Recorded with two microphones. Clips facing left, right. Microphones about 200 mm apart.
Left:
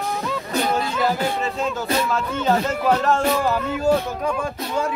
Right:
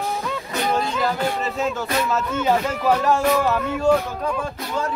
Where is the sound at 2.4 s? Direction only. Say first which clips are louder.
Left 1 dB; 10° right (ahead or behind).